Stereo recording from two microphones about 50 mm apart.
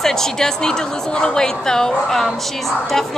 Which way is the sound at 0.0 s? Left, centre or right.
Centre.